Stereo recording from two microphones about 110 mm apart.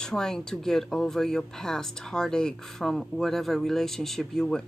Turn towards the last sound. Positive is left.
turn(degrees=5)  # may be behind; listen again after turning